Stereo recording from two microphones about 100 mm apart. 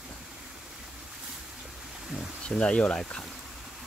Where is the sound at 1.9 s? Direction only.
5° right (ahead or behind).